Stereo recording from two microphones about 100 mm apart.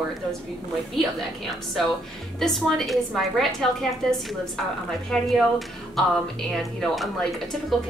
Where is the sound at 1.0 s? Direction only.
5° left (ahead or behind).